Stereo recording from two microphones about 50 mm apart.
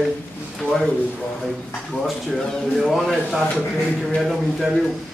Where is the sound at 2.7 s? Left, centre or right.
Centre.